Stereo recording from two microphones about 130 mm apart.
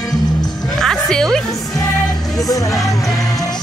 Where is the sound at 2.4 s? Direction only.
25° left (ahead or behind).